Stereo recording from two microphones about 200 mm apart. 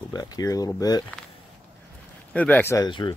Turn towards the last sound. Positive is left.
turn(degrees=20)  # may be behind; listen again after turning